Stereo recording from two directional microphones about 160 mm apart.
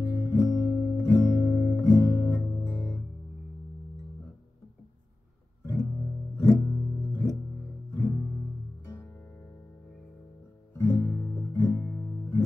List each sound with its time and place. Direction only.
0.0 s guitar: 15° left (ahead or behind)
5.7 s music: 20° left (ahead or behind)
10.8 s music: 20° left (ahead or behind)